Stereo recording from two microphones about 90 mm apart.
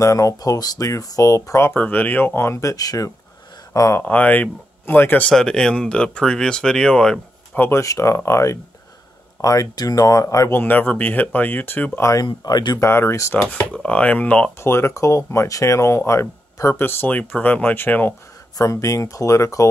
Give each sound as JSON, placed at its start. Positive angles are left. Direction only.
{"t": 0.0, "sound": "speech", "side_deg": 35}
{"t": 1.8, "sound": "speech", "side_deg": 20}
{"t": 4.0, "sound": "speech", "side_deg": 15}
{"t": 5.3, "sound": "speech", "side_deg": 5}
{"t": 7.5, "sound": "speech", "side_deg": 20}
{"t": 7.8, "sound": "speech", "side_deg": 35}
{"t": 10.6, "sound": "speech", "side_deg": 20}
{"t": 12.3, "sound": "speech", "side_deg": 50}
{"t": 12.8, "sound": "speech", "side_deg": 30}
{"t": 14.6, "sound": "speech", "side_deg": 30}
{"t": 18.6, "sound": "speech", "side_deg": 35}